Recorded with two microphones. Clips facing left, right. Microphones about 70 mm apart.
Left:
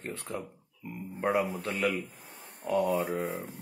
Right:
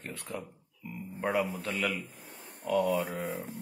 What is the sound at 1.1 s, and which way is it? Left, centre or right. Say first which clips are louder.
Speech: left 2 dB; left.